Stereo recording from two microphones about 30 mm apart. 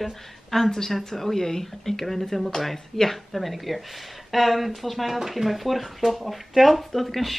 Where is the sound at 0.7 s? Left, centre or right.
Centre.